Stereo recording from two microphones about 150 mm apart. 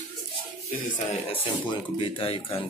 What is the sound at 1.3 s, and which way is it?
Speech, 35° left (ahead or behind).